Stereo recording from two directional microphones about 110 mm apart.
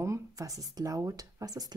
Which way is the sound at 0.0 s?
30° right (ahead or behind).